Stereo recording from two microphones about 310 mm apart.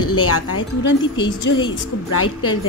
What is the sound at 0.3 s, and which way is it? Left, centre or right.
Speech, left.